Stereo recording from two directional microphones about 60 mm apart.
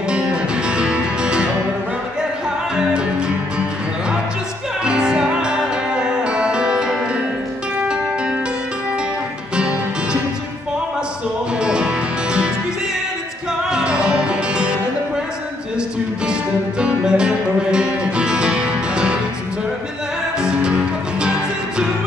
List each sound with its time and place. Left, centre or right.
0.1 s music: centre
4.8 s music: centre
11.6 s music: centre
13.7 s music: centre
16.8 s music: centre
20.3 s music: centre